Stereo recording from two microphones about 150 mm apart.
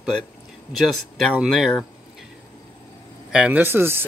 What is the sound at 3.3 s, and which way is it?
Speech, 10° right (ahead or behind).